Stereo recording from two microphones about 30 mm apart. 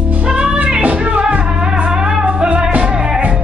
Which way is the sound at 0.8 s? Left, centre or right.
Right.